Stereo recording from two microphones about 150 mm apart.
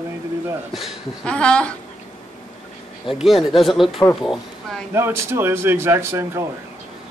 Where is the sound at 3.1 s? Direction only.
Centre (ahead or behind).